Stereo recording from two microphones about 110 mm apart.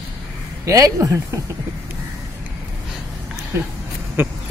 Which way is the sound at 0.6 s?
30° right (ahead or behind).